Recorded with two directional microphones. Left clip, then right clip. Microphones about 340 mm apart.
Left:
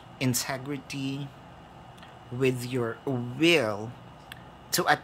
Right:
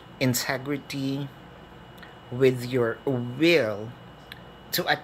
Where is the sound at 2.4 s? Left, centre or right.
Left.